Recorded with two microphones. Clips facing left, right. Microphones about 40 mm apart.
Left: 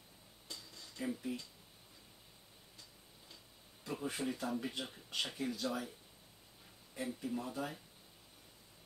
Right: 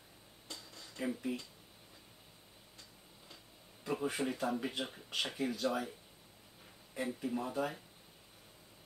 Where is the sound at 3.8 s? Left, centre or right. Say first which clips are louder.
Right 5 dB; centre.